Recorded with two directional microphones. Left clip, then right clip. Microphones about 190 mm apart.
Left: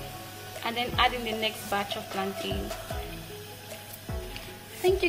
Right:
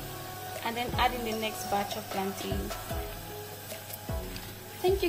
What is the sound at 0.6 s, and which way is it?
A woman's voice, 5° right (ahead or behind).